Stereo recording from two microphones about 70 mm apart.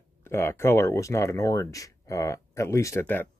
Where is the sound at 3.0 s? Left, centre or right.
Left.